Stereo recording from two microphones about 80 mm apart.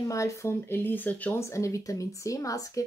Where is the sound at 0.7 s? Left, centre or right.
Left.